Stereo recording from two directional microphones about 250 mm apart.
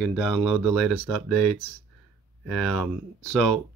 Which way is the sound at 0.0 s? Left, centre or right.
Centre.